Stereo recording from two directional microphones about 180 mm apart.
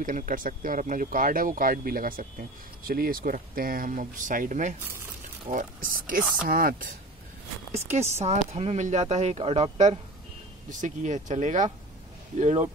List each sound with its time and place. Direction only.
0.0 s speech: 50° right (ahead or behind)
8.2 s speech: 40° right (ahead or behind)